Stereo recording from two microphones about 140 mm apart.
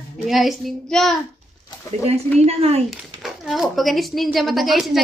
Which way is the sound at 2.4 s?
50° right (ahead or behind).